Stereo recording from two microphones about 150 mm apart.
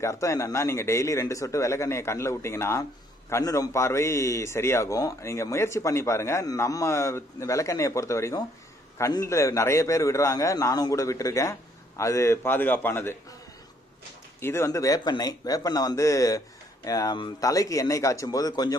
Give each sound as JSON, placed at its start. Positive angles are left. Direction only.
{"t": 0.0, "sound": "a man's voice", "side_deg": 20}
{"t": 14.4, "sound": "speech", "side_deg": 15}